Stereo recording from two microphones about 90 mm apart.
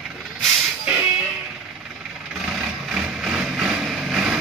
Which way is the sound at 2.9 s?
5° right (ahead or behind).